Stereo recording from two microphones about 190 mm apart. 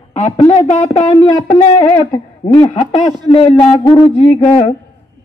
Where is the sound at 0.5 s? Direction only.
35° left (ahead or behind).